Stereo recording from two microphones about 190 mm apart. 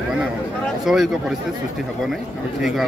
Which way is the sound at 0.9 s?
Centre (ahead or behind).